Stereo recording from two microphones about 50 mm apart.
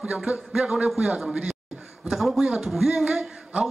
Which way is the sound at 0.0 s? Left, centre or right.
Right.